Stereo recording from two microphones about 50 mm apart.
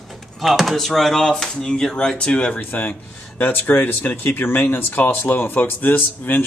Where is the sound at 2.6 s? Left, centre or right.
Left.